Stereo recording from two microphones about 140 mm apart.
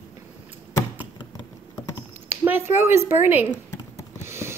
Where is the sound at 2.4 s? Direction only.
15° right (ahead or behind).